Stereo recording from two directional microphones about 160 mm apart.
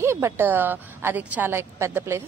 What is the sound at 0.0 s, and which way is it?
A woman's voice, 15° right (ahead or behind).